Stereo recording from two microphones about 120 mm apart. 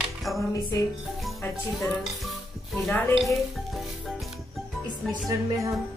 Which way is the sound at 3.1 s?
Centre (ahead or behind).